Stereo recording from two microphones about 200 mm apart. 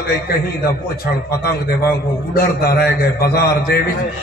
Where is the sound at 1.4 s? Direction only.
50° left (ahead or behind).